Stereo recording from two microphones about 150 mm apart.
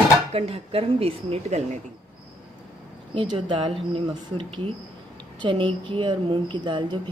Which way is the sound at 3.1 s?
35° right (ahead or behind).